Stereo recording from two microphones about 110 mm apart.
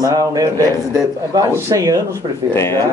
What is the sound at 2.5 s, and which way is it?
Speech, 25° left (ahead or behind).